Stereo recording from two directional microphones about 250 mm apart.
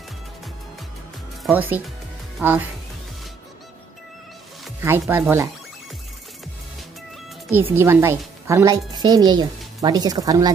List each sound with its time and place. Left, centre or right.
1.4 s speech: centre
4.8 s a woman's voice: centre
7.7 s a woman's voice: centre